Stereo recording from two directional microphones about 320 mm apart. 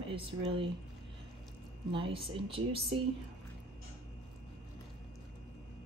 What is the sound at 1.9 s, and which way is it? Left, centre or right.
Speech, centre.